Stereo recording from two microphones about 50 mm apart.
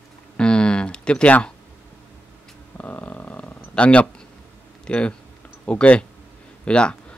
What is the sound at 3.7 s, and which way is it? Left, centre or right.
Speech, left.